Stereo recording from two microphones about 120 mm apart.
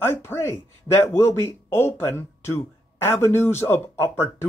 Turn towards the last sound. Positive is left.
turn(degrees=20)  # may be behind; listen again after turning